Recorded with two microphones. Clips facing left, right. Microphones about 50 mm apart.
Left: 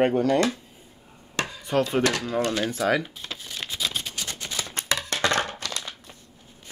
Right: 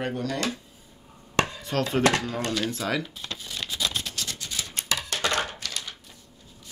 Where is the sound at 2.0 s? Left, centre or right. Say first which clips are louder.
Right 1 dB; right.